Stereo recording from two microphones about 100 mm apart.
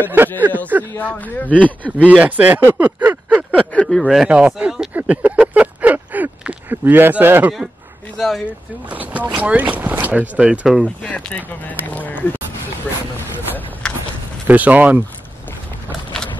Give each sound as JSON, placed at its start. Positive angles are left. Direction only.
{"t": 0.0, "sound": "speech", "side_deg": -20}
{"t": 0.9, "sound": "speech", "side_deg": 15}
{"t": 2.0, "sound": "speech", "side_deg": -15}
{"t": 3.7, "sound": "speech", "side_deg": 5}
{"t": 4.3, "sound": "speech", "side_deg": -10}
{"t": 8.9, "sound": "speech", "side_deg": -15}
{"t": 11.0, "sound": "speech", "side_deg": 10}
{"t": 13.8, "sound": "a sound", "side_deg": 10}
{"t": 14.5, "sound": "speech", "side_deg": -15}